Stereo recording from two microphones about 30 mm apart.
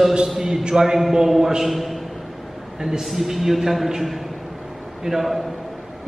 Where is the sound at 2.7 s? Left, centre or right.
Centre.